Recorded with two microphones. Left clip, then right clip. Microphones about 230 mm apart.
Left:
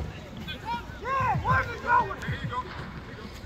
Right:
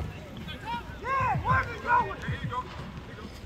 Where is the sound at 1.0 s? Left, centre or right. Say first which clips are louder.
Left 1 dB; centre.